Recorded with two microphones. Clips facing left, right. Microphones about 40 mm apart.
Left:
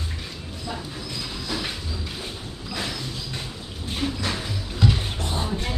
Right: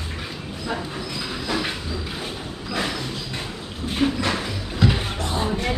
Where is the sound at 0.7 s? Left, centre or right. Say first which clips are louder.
Right 5 dB; right.